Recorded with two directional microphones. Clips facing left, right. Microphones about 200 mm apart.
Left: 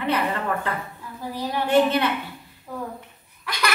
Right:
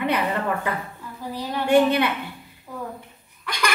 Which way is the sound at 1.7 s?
15° right (ahead or behind).